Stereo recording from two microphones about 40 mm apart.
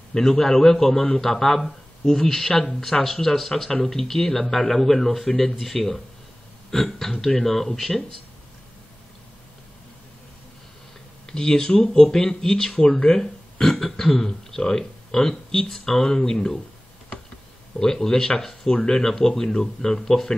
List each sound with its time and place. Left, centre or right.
0.1 s speech: centre
11.2 s speech: centre
17.7 s speech: centre